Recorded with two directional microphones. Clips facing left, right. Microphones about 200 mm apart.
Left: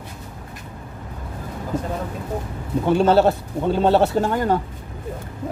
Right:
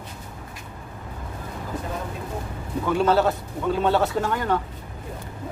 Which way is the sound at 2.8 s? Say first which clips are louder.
Left 4 dB; 30° left (ahead or behind).